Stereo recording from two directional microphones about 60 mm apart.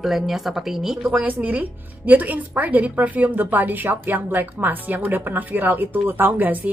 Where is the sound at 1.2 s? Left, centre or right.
Right.